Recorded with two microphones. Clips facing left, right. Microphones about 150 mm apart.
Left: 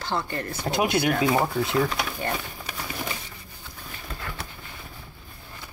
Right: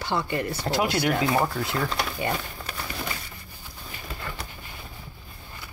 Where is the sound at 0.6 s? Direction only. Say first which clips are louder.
Left 3 dB; 20° left (ahead or behind).